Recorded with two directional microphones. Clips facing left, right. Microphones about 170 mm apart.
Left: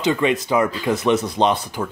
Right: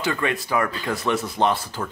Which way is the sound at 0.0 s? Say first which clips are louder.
Left 6 dB; 20° left (ahead or behind).